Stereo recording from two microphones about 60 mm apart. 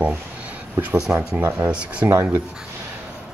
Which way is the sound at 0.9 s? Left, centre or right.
Centre.